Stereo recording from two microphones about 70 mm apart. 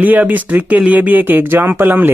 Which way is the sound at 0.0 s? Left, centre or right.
Right.